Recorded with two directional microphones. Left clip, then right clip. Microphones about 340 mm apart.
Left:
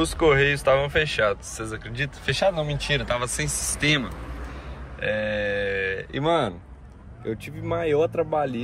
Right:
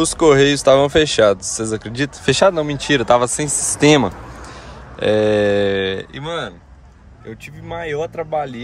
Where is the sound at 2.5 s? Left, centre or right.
Right.